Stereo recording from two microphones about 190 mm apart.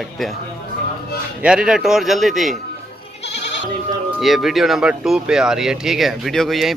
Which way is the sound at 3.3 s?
65° left (ahead or behind).